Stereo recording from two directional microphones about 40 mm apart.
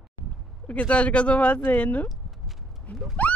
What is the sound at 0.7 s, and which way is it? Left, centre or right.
Speech, left.